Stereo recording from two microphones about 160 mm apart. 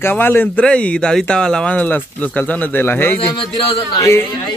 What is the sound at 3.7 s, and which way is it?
Speech, 25° left (ahead or behind).